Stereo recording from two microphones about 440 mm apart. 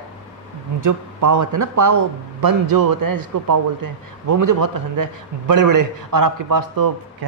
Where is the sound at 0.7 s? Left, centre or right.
Right.